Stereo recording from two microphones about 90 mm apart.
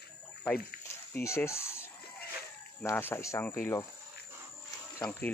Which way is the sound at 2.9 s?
25° left (ahead or behind).